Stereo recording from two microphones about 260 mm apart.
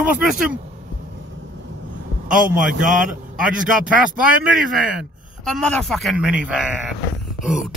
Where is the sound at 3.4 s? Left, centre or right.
Centre.